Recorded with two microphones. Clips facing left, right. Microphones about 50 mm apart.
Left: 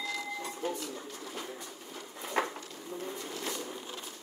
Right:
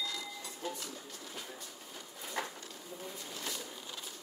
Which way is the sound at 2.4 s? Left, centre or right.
Left.